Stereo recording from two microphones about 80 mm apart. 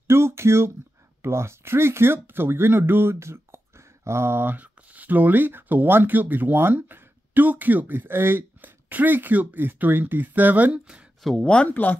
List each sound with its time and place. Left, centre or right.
0.0 s speech: right
11.2 s speech: centre